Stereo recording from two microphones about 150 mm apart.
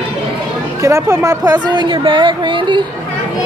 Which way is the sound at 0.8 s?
20° right (ahead or behind).